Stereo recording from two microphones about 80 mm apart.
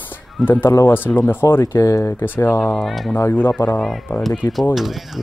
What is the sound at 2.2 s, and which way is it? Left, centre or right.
Speech, left.